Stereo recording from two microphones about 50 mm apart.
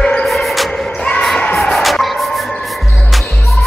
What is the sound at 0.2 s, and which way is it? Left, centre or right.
Music, centre.